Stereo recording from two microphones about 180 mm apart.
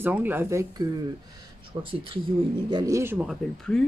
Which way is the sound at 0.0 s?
10° right (ahead or behind).